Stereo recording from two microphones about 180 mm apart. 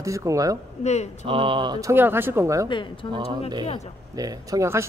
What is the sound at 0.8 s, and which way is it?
Speech, 40° left (ahead or behind).